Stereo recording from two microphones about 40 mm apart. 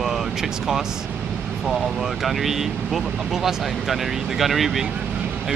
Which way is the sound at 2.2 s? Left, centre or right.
Centre.